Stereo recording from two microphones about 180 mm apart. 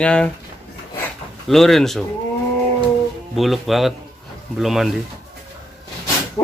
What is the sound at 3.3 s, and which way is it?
Speech, centre (ahead or behind).